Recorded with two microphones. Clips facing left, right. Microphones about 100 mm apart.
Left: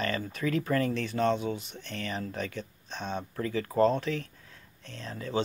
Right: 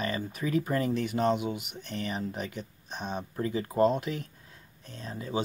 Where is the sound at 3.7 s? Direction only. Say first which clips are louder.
Left 1 dB; 10° right (ahead or behind).